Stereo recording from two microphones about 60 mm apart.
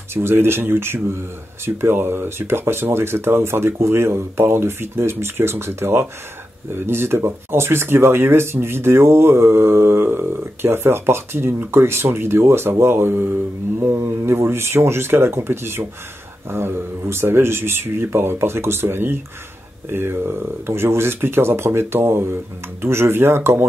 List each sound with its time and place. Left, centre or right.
0.1 s speech: right